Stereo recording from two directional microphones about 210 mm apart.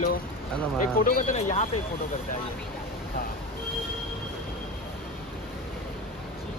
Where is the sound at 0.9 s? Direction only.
40° left (ahead or behind).